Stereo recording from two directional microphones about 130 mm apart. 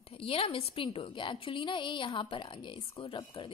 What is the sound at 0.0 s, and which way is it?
A woman's voice, 45° left (ahead or behind).